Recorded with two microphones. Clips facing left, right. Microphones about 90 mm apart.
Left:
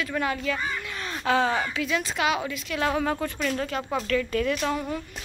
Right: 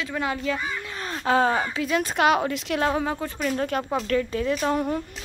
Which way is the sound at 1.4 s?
35° right (ahead or behind).